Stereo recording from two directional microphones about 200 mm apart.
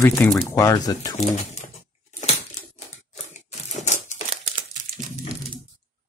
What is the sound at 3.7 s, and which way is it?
Crumpling, 35° left (ahead or behind).